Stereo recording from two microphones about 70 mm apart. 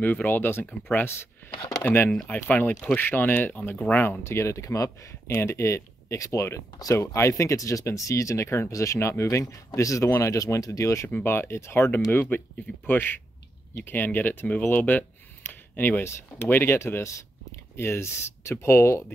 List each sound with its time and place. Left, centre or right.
0.0 s speech: left
4.2 s speech: left
10.3 s speech: left
11.1 s speech: left
11.3 s speech: left